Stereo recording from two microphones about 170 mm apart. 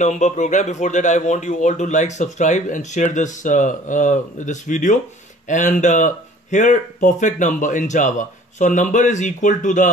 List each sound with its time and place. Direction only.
0.0 s speech: 45° left (ahead or behind)